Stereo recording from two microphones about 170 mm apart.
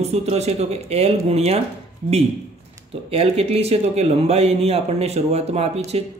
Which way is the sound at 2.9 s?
35° right (ahead or behind).